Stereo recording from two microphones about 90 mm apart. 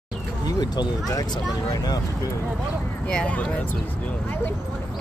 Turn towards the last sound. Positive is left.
turn(degrees=10)  # may be behind; listen again after turning